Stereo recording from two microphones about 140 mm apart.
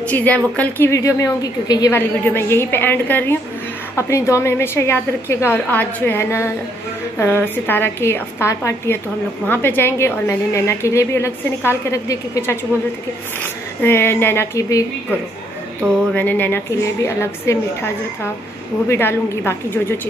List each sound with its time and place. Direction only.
0.1 s a woman's voice: 10° left (ahead or behind)
2.0 s a woman's voice: 15° left (ahead or behind)
16.1 s a woman's voice: 10° left (ahead or behind)
18.9 s a woman's voice: 15° left (ahead or behind)